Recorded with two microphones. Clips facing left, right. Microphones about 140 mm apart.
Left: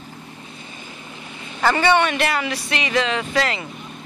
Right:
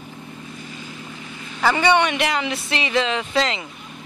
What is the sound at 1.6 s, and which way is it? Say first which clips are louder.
Speech: left 1 dB; 5° right (ahead or behind).